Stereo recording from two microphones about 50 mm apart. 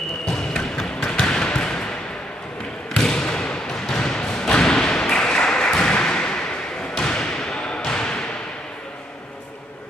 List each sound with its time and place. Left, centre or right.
0.3 s basketball bounce: centre
3.1 s thump: centre
7.0 s basketball bounce: centre